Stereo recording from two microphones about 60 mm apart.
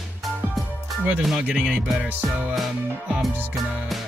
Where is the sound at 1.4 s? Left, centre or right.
Centre.